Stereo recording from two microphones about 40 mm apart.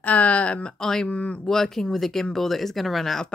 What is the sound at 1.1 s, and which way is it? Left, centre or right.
Speech, left.